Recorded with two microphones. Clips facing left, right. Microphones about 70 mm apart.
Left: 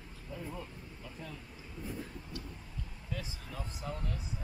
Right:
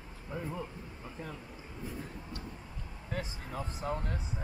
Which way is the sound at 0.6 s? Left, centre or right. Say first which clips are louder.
Right 4 dB; right.